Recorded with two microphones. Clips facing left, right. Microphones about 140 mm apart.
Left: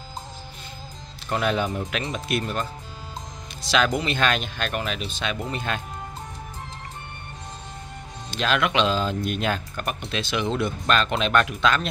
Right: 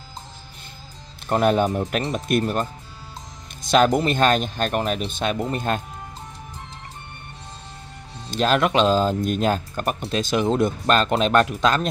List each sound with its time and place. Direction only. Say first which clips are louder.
1.3 s speech: right 5 dB; 45° right (ahead or behind)
8.3 s speech: right 4 dB; 40° right (ahead or behind)